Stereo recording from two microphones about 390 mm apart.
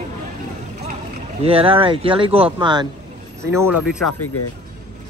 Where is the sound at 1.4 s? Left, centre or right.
Centre.